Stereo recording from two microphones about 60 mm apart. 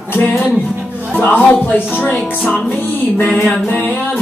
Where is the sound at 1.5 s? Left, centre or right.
Left.